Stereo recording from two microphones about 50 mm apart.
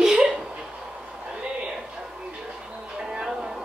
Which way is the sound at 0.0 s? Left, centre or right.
Centre.